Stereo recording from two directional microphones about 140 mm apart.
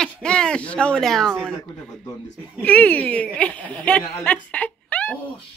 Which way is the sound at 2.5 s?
10° left (ahead or behind).